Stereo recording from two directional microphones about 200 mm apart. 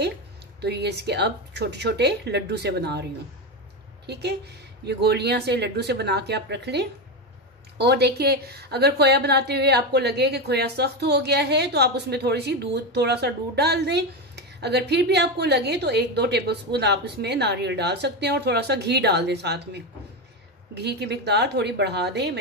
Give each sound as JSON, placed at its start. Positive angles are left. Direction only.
{"t": 0.6, "sound": "a woman's voice", "side_deg": -55}